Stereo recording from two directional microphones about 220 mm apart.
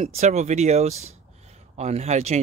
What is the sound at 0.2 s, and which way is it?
Speech, 30° right (ahead or behind).